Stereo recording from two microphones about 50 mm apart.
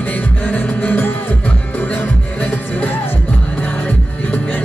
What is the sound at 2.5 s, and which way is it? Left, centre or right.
Music, left.